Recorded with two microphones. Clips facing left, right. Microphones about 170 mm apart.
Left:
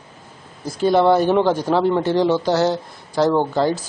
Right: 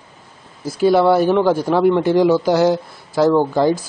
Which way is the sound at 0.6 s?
5° right (ahead or behind).